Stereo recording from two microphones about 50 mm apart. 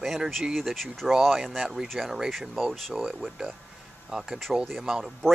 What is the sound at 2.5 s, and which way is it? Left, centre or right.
Speech, centre.